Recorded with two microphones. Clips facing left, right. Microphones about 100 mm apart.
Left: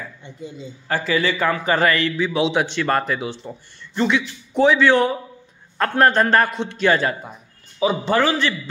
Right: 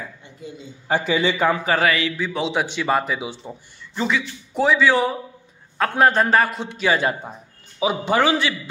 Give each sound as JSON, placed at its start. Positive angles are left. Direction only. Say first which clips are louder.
{"t": 0.8, "sound": "a man's voice", "louder": "right 1 dB", "side_deg": -20}
{"t": 1.6, "sound": "a man's voice", "louder": "left 1 dB", "side_deg": -5}